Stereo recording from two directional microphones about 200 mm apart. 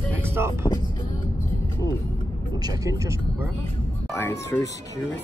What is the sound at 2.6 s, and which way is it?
Speech, 20° right (ahead or behind).